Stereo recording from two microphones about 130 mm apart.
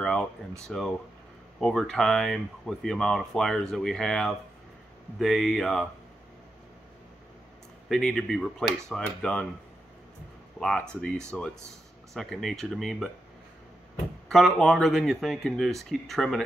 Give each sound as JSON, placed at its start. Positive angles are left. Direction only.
{"t": 0.0, "sound": "speech", "side_deg": 5}
{"t": 7.9, "sound": "speech", "side_deg": 5}
{"t": 11.3, "sound": "speech", "side_deg": 10}
{"t": 14.3, "sound": "speech", "side_deg": 5}